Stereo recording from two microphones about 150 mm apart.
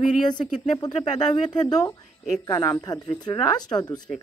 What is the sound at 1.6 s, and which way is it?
Speech, 25° left (ahead or behind).